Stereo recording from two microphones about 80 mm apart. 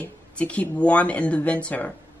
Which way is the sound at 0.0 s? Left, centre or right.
Centre.